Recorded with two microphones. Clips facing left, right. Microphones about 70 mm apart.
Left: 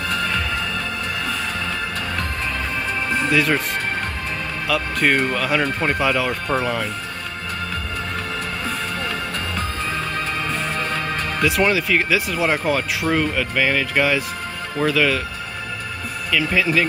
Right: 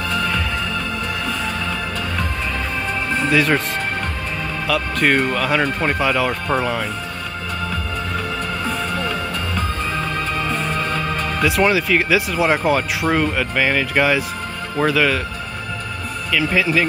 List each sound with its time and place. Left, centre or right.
3.2 s speech: centre
4.6 s speech: centre
8.6 s music: right
10.8 s music: left
11.4 s speech: centre
16.3 s speech: centre